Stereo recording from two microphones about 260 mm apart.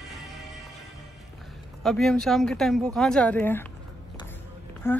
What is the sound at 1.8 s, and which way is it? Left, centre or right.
Speech, centre.